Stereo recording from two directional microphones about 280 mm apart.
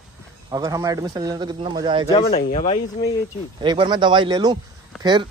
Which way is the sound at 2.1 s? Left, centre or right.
Left.